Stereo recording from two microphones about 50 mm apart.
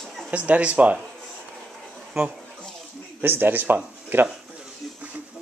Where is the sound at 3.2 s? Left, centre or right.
Right.